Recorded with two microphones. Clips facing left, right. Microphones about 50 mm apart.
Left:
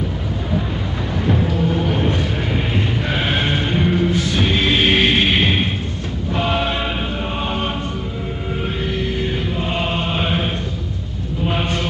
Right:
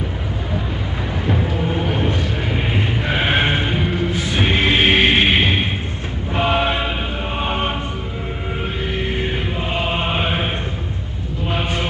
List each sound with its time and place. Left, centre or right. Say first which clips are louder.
1.2 s music: left 3 dB; centre
3.7 s music: left 3 dB; centre
4.2 s music: even; right
6.3 s vehicle: right 2 dB; right
9.6 s music: right 1 dB; centre
10.0 s chant: even; right